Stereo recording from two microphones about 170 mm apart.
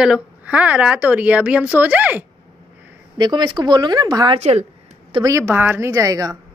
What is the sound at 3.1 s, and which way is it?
A woman's voice, 25° right (ahead or behind).